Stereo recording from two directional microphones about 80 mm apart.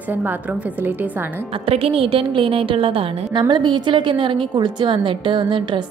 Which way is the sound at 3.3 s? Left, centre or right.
Right.